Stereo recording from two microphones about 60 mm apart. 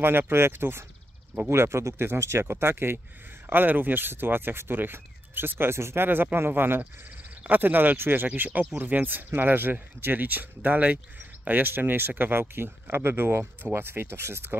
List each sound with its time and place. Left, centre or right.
0.0 s speech: right
6.0 s speech: right